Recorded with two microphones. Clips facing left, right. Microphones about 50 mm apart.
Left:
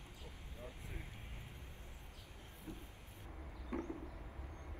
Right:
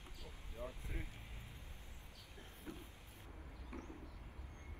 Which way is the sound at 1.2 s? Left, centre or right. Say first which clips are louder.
Left 2 dB; left.